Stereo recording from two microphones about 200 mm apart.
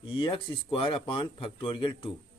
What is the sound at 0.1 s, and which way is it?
Speech, 25° left (ahead or behind).